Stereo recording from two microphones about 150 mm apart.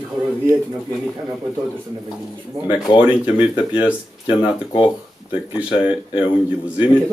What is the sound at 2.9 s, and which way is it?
Speech, 35° left (ahead or behind).